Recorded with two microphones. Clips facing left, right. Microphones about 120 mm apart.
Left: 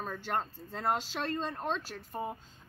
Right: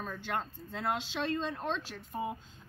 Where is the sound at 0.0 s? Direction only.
35° left (ahead or behind).